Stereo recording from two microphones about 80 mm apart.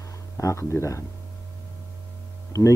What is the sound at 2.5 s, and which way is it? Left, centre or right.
Speech, left.